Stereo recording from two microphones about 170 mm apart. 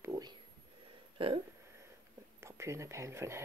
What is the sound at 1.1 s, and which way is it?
Hiccup, 30° right (ahead or behind).